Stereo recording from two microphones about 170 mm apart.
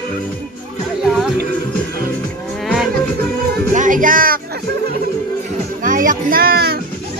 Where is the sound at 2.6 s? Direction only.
Centre (ahead or behind).